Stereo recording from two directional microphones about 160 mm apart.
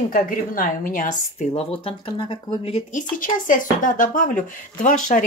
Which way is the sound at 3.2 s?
55° left (ahead or behind).